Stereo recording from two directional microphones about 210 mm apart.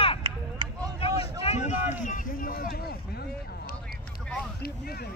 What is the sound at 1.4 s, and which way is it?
Run, 35° left (ahead or behind).